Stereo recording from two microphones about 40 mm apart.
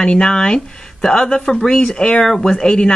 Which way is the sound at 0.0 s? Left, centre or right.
Left.